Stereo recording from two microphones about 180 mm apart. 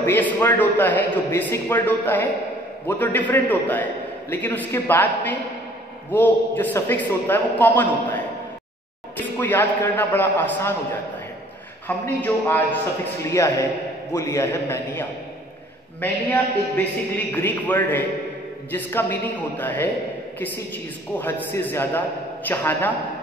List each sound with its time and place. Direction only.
0.0 s a man's voice: 10° left (ahead or behind)
12.2 s a man's voice: 10° left (ahead or behind)